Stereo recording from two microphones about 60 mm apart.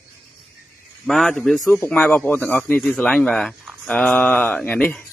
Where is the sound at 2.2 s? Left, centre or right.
Left.